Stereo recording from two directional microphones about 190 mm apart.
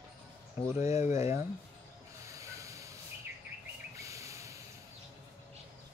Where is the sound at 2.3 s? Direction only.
15° right (ahead or behind).